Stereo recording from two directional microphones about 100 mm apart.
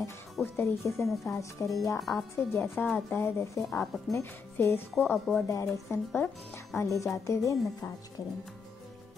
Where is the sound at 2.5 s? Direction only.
25° left (ahead or behind).